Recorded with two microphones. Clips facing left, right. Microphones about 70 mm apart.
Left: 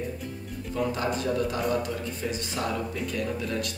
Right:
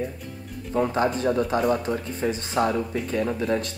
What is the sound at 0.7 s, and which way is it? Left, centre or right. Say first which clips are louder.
Speech: right 5 dB; right.